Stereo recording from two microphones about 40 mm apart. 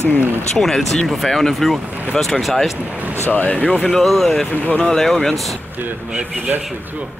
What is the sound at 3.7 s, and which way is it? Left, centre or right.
Speech, centre.